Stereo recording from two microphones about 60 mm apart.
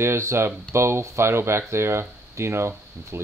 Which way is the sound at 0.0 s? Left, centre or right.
Right.